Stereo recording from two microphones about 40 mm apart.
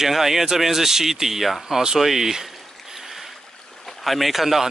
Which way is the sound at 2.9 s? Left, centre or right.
Centre.